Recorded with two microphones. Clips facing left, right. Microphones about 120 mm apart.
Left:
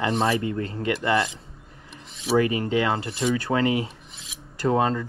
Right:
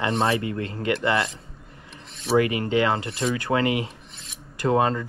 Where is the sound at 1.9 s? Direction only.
Centre (ahead or behind).